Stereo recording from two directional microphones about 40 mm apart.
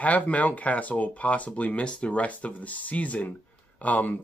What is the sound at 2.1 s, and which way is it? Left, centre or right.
Speech, left.